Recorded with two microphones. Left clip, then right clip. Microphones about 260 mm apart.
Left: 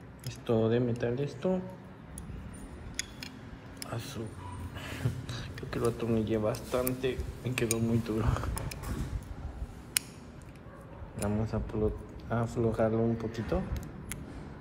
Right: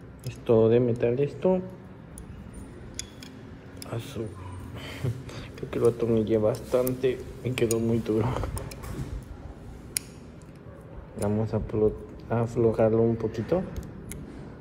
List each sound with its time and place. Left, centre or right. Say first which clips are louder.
0.5 s a man's voice: right 8 dB; centre
3.9 s a man's voice: right 4 dB; centre
5.7 s a man's voice: right 8 dB; centre
11.2 s a man's voice: right 6 dB; centre